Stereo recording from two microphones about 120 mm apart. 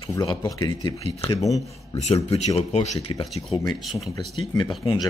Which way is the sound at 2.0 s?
65° left (ahead or behind).